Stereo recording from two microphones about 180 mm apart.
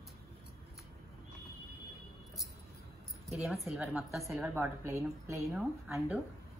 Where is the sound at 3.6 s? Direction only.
5° right (ahead or behind).